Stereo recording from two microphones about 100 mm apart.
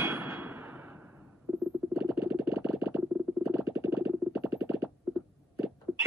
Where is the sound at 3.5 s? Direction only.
20° right (ahead or behind).